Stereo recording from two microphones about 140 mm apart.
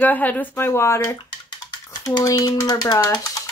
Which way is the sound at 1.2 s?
30° left (ahead or behind).